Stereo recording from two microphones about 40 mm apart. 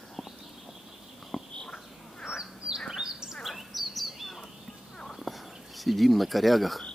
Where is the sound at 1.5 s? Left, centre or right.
Left.